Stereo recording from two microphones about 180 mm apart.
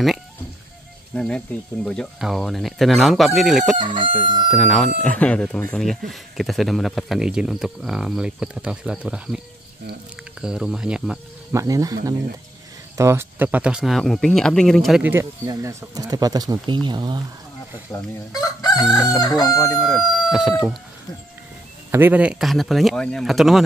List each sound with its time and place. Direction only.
1.1 s speech: 5° left (ahead or behind)
3.7 s speech: 45° right (ahead or behind)
4.0 s speech: 25° right (ahead or behind)
4.5 s speech: centre (ahead or behind)
10.4 s speech: 5° right (ahead or behind)
11.5 s speech: 20° right (ahead or behind)
17.9 s chicken: 20° left (ahead or behind)
20.0 s speech: centre (ahead or behind)
21.9 s speech: 10° right (ahead or behind)